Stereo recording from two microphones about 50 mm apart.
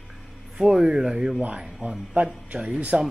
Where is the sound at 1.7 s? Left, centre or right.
Centre.